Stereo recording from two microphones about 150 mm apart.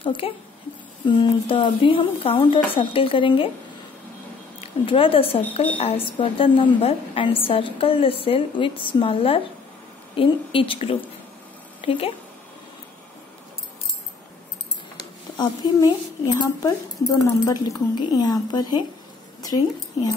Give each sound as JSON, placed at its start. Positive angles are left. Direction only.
{"t": 0.0, "sound": "a woman's voice", "side_deg": 35}
{"t": 4.6, "sound": "a woman's voice", "side_deg": 35}
{"t": 15.3, "sound": "a woman's voice", "side_deg": 25}